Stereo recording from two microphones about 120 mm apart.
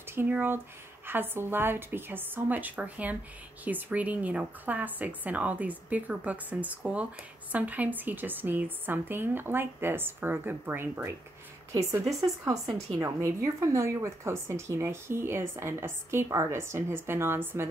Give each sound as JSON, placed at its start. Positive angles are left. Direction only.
{"t": 0.1, "sound": "speech", "side_deg": -15}
{"t": 12.4, "sound": "a woman's voice", "side_deg": -25}